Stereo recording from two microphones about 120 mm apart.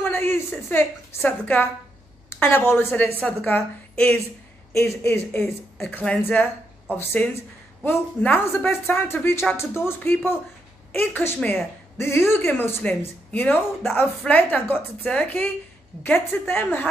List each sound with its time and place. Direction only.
0.0 s a woman's voice: 20° left (ahead or behind)